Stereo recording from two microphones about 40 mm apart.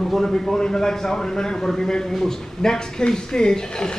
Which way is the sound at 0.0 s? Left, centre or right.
Centre.